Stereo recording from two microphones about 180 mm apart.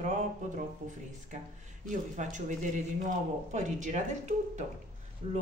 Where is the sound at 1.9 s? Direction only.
45° right (ahead or behind).